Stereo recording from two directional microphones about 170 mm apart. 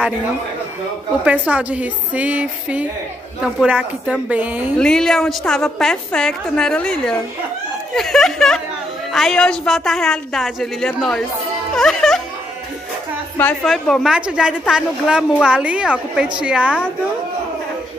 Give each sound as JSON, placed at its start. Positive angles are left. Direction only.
{"t": 1.2, "sound": "a woman's voice", "side_deg": -10}
{"t": 4.7, "sound": "a woman's voice", "side_deg": 5}
{"t": 11.7, "sound": "music", "side_deg": 5}
{"t": 13.4, "sound": "a woman's voice", "side_deg": 5}